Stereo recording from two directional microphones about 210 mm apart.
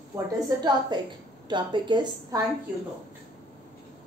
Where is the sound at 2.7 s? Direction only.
5° right (ahead or behind).